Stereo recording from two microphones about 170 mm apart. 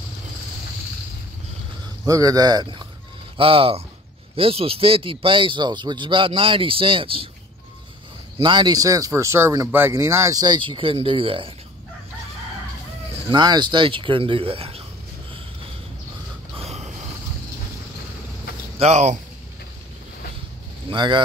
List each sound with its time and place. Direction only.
2.0 s speech: 20° right (ahead or behind)
8.4 s speech: 25° right (ahead or behind)
13.3 s speech: 25° right (ahead or behind)
16.5 s snort: 40° right (ahead or behind)
18.8 s speech: 40° right (ahead or behind)
20.9 s speech: 25° right (ahead or behind)